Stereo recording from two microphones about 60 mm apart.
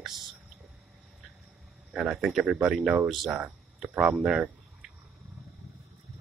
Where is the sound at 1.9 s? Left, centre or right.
Centre.